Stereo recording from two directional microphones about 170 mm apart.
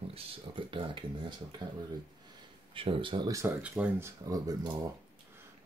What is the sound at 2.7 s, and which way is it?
Speech, 30° right (ahead or behind).